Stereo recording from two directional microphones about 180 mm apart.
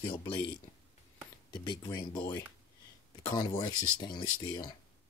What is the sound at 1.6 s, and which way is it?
Speech, 25° left (ahead or behind).